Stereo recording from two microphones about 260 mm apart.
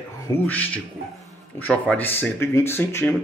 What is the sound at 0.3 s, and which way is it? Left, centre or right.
Speech, centre.